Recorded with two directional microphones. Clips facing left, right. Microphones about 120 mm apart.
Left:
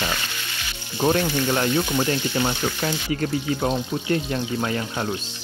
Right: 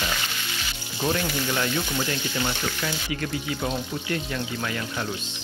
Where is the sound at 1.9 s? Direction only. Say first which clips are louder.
Left 5 dB; 25° left (ahead or behind).